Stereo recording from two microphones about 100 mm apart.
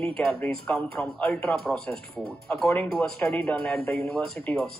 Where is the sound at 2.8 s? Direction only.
10° left (ahead or behind).